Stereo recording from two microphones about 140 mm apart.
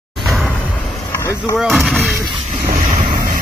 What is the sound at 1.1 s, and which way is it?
Vehicle, 20° left (ahead or behind).